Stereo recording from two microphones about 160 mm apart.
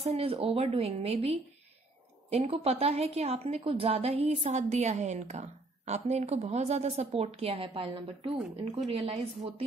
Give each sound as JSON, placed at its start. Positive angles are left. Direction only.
{"t": 0.0, "sound": "a woman's voice", "side_deg": -40}